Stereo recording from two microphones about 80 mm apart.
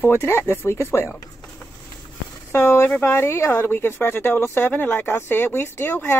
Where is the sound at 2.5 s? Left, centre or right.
Left.